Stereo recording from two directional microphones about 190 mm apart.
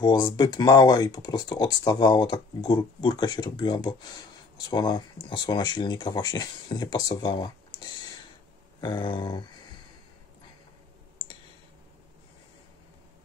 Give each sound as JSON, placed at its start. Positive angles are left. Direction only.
{"t": 0.0, "sound": "speech", "side_deg": 20}
{"t": 8.8, "sound": "speech", "side_deg": 25}